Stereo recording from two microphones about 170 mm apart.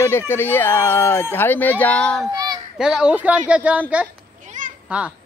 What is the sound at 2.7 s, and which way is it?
A woman's voice, 5° right (ahead or behind).